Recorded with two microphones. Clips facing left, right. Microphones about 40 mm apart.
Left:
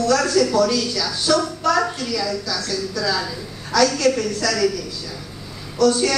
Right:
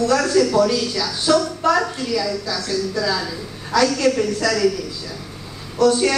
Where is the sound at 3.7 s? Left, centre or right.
Right.